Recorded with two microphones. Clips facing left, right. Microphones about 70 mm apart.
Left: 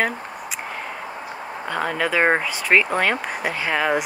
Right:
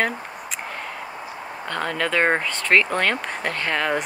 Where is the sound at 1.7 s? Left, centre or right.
Centre.